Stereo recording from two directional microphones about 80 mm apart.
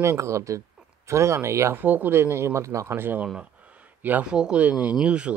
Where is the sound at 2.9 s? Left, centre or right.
Right.